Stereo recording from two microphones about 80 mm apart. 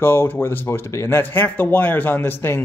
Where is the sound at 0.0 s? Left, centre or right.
Left.